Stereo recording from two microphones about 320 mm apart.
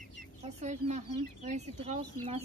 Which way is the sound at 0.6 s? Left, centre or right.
Right.